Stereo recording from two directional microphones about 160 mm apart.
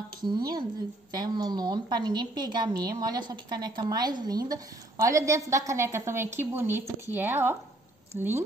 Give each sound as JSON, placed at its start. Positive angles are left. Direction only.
{"t": 0.2, "sound": "a woman's voice", "side_deg": -25}